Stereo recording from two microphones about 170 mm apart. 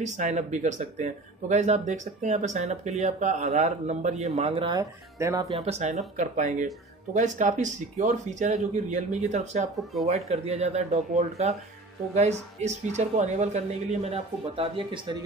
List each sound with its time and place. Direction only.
0.0 s a woman's voice: 45° right (ahead or behind)
4.7 s speech: 20° right (ahead or behind)
5.6 s a woman's voice: 40° right (ahead or behind)